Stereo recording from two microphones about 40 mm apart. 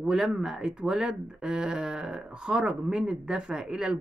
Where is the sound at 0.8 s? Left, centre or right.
Right.